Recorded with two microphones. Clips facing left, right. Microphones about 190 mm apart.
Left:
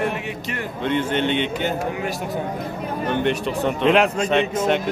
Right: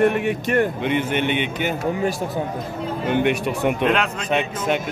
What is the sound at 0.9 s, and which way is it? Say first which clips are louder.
Speech: even; 10° right (ahead or behind).